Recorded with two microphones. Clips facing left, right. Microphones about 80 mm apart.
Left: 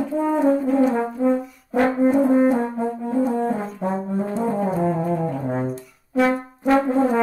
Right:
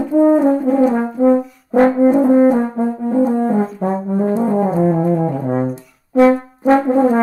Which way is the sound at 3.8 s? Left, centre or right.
Right.